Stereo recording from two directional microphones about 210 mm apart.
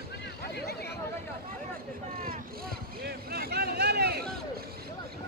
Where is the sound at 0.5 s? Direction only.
50° left (ahead or behind).